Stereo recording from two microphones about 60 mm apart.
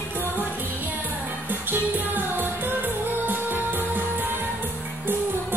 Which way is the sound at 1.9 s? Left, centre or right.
Right.